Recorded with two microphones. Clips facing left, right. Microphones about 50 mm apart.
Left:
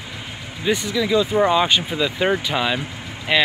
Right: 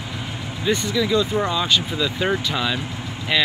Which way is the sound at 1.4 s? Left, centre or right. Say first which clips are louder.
Left 4 dB; left.